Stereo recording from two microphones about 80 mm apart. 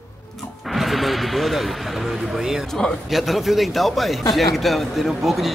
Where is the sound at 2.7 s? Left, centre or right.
Centre.